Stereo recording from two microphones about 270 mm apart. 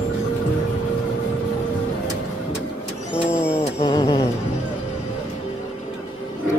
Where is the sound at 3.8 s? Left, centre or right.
Left.